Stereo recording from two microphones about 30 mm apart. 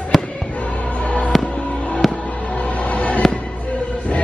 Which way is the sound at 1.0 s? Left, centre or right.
Left.